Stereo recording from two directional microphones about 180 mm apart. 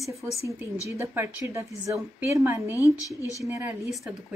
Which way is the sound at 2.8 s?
20° left (ahead or behind).